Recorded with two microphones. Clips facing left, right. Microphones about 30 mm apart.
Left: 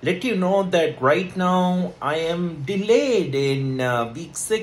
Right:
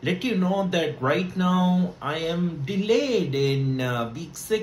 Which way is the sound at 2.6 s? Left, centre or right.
Centre.